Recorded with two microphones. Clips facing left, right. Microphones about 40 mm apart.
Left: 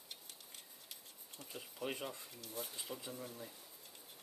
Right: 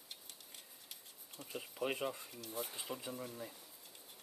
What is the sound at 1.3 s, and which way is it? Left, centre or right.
Speech, centre.